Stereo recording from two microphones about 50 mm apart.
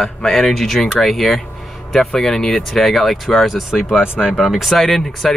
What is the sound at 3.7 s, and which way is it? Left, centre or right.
Speech, centre.